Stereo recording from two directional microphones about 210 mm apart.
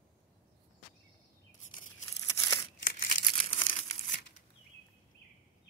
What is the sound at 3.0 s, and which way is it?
Crumpling, 40° left (ahead or behind).